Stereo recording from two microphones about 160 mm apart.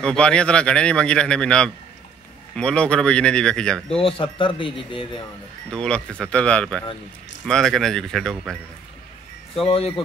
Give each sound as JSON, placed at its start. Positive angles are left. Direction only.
{"t": 0.0, "sound": "a man's voice", "side_deg": 5}
{"t": 4.0, "sound": "speech", "side_deg": 30}
{"t": 5.7, "sound": "a man's voice", "side_deg": 5}
{"t": 9.6, "sound": "speech", "side_deg": 35}